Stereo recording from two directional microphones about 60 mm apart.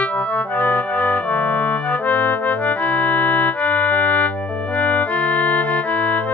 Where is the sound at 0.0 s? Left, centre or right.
Left.